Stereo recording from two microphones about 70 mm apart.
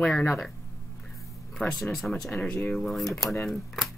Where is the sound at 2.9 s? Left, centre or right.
Centre.